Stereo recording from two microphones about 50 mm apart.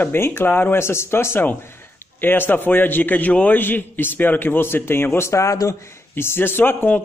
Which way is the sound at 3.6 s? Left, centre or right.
Left.